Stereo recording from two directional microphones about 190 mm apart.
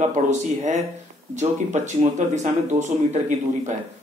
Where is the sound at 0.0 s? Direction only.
40° right (ahead or behind).